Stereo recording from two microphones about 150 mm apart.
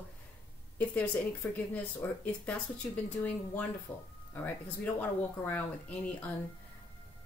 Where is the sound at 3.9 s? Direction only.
10° left (ahead or behind).